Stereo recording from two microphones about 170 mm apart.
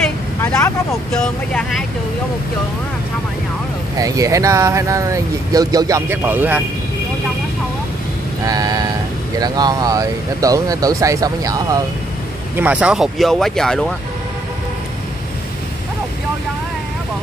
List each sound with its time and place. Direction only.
0.4 s vehicle: 15° left (ahead or behind)
1.1 s speech: 5° left (ahead or behind)
4.0 s speech: 20° right (ahead or behind)
8.5 s speech: 20° right (ahead or behind)
12.5 s speech: 10° right (ahead or behind)